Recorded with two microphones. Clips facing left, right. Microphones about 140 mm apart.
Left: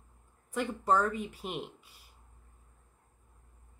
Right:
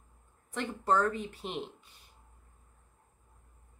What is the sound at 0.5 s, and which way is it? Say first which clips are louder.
Speech: left 1 dB; 10° left (ahead or behind).